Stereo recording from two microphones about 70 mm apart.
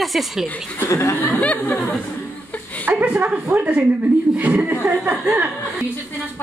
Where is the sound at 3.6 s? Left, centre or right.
Centre.